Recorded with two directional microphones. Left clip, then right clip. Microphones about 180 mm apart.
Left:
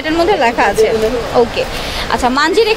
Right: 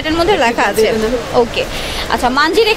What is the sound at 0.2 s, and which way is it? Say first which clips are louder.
Speech: left 1 dB; centre (ahead or behind).